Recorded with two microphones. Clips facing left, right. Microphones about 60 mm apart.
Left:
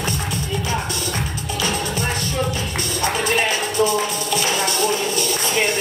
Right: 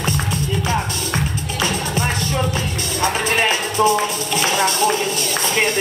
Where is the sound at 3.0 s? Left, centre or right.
Right.